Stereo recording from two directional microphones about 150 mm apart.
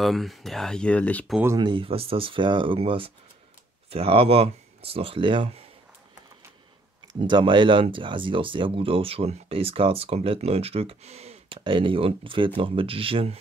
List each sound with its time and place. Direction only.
0.0 s speech: centre (ahead or behind)
1.6 s speech: 35° right (ahead or behind)
7.2 s speech: 30° right (ahead or behind)